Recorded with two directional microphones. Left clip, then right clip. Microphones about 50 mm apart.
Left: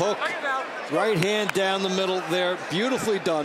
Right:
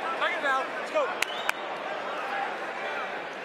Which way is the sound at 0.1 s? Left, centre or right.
Right.